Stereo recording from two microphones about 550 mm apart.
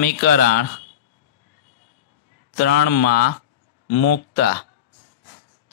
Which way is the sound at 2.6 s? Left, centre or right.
Centre.